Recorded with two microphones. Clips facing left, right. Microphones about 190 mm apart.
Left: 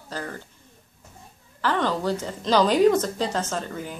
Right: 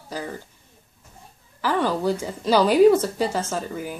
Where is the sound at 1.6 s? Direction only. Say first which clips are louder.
Right 2 dB; 10° right (ahead or behind).